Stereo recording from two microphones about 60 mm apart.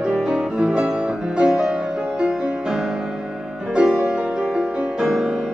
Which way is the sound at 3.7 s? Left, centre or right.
Centre.